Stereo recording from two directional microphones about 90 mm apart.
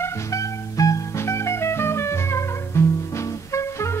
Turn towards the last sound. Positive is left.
turn(degrees=35)  # may be behind; listen again after turning